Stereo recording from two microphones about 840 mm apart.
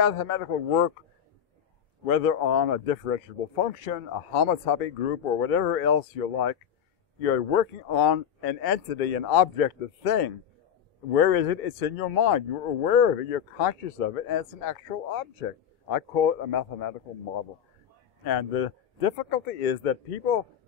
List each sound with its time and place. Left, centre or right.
0.0 s speech: left
2.0 s speech: left
18.2 s speech: left